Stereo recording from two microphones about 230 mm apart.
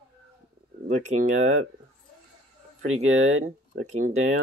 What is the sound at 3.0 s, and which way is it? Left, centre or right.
Speech, right.